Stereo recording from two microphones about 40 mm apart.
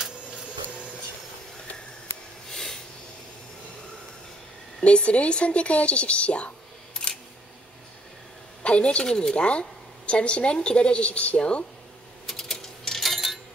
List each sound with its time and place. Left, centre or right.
2.5 s a sound: centre
4.8 s a woman's voice: left
6.9 s camera: centre
8.6 s a woman's voice: left
9.3 s a woman's voice: left
12.3 s a sound: centre